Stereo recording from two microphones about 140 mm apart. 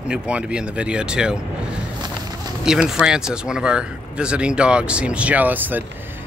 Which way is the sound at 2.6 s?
5° right (ahead or behind).